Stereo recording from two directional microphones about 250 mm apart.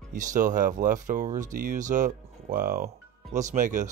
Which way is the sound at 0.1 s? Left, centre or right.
Right.